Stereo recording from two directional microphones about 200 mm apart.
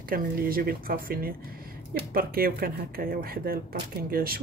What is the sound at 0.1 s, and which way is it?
Speech, 45° right (ahead or behind).